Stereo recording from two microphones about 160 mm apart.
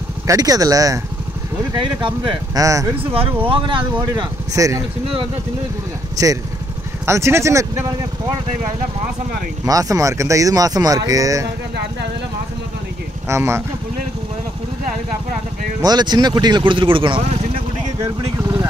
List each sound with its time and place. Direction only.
0.3 s speech: 20° right (ahead or behind)
3.4 s speech: 30° right (ahead or behind)
6.2 s speech: 20° right (ahead or behind)
9.7 s speech: 20° right (ahead or behind)
13.3 s speech: 15° right (ahead or behind)
15.8 s speech: 25° right (ahead or behind)